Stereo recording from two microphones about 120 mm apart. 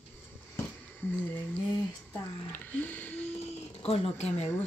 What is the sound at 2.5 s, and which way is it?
Music, 15° left (ahead or behind).